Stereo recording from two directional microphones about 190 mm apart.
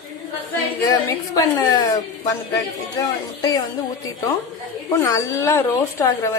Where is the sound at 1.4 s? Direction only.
20° left (ahead or behind).